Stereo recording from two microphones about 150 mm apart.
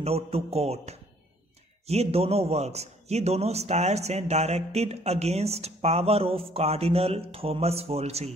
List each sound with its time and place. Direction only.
0.0 s a man's voice: 40° right (ahead or behind)